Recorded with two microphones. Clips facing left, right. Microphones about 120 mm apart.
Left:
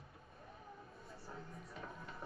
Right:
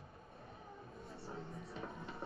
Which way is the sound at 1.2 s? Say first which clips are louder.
Right 4 dB; 25° right (ahead or behind).